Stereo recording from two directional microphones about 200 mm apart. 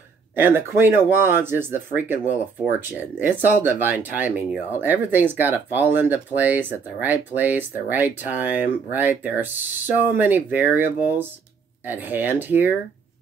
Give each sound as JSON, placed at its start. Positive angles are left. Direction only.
{"t": 0.4, "sound": "speech", "side_deg": -10}
{"t": 3.2, "sound": "speech", "side_deg": -10}